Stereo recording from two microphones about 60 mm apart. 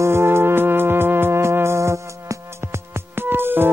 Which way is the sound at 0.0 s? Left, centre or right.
Right.